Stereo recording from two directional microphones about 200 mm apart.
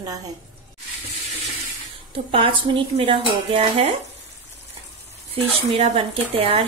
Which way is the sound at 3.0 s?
25° right (ahead or behind).